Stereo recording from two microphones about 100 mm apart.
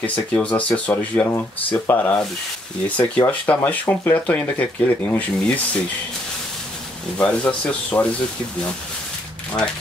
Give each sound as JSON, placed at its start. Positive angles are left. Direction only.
{"t": 0.0, "sound": "speech", "side_deg": 15}
{"t": 7.2, "sound": "speech", "side_deg": 10}